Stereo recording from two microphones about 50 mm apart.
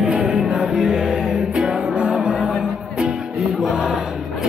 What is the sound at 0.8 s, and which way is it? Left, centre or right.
Music, centre.